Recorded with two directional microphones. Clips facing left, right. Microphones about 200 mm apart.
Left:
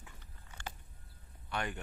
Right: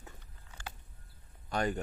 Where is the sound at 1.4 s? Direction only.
40° right (ahead or behind).